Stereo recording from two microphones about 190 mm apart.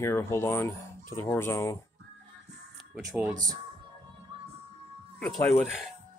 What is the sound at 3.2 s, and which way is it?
Speech, 20° right (ahead or behind).